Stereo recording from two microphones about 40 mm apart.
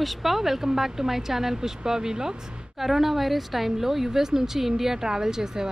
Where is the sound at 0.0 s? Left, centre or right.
Centre.